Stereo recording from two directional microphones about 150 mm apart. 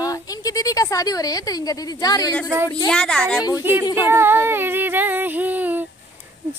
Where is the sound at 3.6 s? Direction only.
15° right (ahead or behind).